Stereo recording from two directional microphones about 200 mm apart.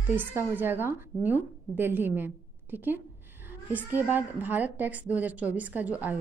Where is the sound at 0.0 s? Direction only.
10° right (ahead or behind).